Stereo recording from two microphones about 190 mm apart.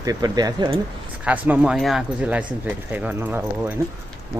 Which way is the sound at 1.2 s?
10° right (ahead or behind).